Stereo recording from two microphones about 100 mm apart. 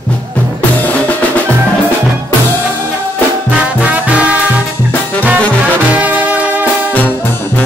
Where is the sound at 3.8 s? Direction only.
15° right (ahead or behind).